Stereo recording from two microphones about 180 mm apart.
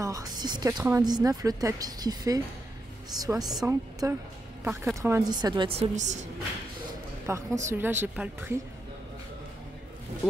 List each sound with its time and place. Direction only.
0.0 s a woman's voice: 20° right (ahead or behind)
5.8 s a woman's voice: 40° right (ahead or behind)
7.2 s speech: 15° right (ahead or behind)